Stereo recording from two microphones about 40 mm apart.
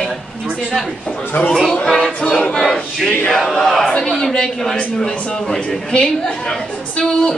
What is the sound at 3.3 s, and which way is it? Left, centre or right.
Battle cry, centre.